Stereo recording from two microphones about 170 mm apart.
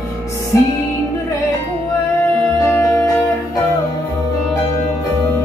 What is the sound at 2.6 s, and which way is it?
Music, 15° left (ahead or behind).